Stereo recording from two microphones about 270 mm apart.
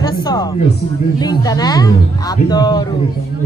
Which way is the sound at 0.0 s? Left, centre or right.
Centre.